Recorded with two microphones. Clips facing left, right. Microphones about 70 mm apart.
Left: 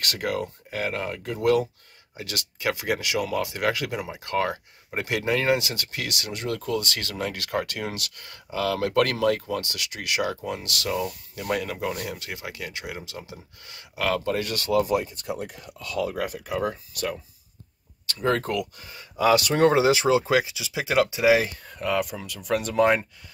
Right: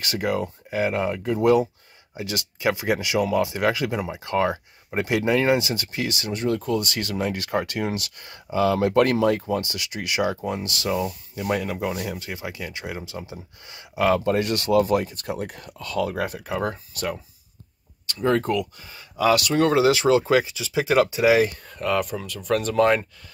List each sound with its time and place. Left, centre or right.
0.0 s speech: centre; by 14.8 s right
15.0 s speech: right
16.2 s speech: right
18.2 s speech: centre
19.6 s speech: left